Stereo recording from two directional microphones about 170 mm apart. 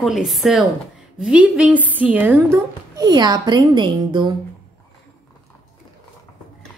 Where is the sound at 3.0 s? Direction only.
25° right (ahead or behind).